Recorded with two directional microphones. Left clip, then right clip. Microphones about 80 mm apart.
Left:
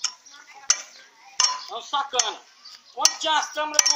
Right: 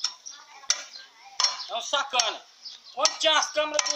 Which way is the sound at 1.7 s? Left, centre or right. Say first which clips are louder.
Left 1 dB; right.